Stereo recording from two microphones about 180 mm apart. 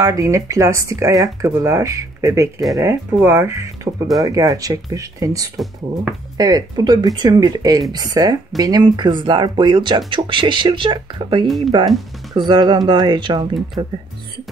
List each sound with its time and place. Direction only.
0.0 s speech: 20° right (ahead or behind)
11.4 s speech: centre (ahead or behind)
12.4 s speech: 25° right (ahead or behind)